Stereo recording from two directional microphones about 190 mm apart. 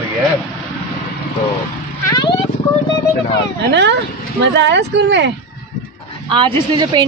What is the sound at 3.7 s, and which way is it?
Speech, 65° right (ahead or behind).